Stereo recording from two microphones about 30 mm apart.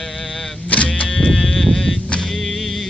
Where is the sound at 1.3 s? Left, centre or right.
Centre.